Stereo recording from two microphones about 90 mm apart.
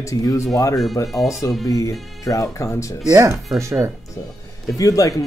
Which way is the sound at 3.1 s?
35° right (ahead or behind).